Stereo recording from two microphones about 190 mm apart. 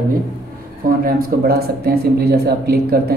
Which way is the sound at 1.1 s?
55° right (ahead or behind).